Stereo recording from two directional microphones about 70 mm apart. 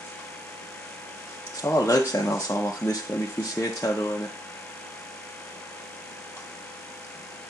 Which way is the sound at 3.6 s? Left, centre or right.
Left.